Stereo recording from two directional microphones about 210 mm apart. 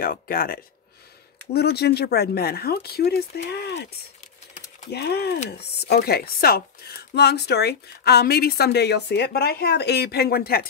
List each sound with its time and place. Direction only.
0.0 s speech: 45° left (ahead or behind)
4.9 s speech: 50° left (ahead or behind)